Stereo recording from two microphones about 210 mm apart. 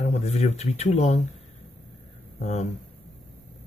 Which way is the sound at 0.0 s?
30° left (ahead or behind).